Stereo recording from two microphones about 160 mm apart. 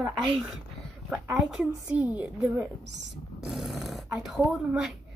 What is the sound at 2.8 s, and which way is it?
Speech, 90° right.